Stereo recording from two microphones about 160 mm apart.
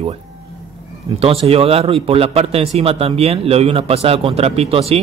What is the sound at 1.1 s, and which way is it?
A man's voice, 35° right (ahead or behind).